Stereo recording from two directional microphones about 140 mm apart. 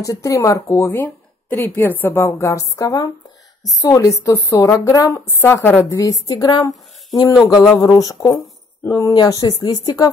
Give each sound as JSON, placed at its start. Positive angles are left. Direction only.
{"t": 0.0, "sound": "speech", "side_deg": 20}
{"t": 7.7, "sound": "speech", "side_deg": 25}